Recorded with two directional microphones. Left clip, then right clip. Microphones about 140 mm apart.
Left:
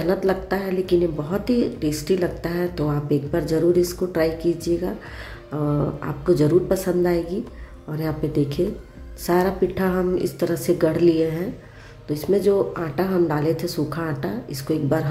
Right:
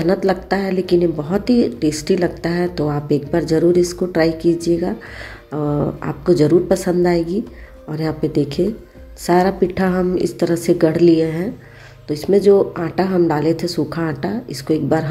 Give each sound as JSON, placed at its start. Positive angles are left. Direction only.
{"t": 0.0, "sound": "a woman's voice", "side_deg": -30}